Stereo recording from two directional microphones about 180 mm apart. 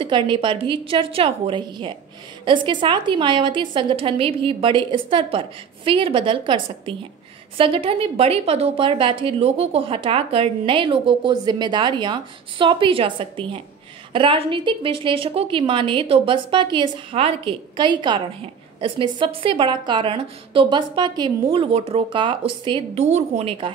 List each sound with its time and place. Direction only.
0.0 s a woman's voice: 25° right (ahead or behind)